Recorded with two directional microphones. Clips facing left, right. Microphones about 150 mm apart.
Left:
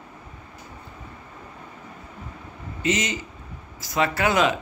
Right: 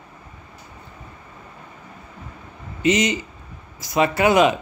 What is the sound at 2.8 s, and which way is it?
Speech, 15° right (ahead or behind).